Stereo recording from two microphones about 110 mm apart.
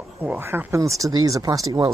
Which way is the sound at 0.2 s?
20° right (ahead or behind).